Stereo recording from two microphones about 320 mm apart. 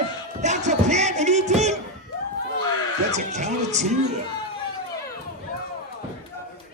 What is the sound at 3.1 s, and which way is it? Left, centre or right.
Speech, right.